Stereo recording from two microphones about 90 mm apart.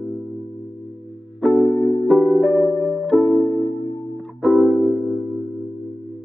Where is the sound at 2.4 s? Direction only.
15° left (ahead or behind).